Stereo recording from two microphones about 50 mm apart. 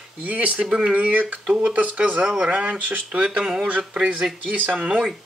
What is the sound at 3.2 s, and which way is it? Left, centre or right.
Speech, centre.